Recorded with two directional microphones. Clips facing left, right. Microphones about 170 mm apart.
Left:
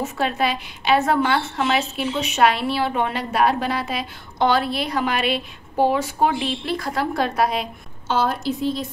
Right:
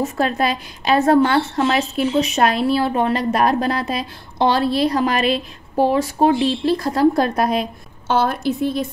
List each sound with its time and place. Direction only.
0.2 s a woman's voice: 40° right (ahead or behind)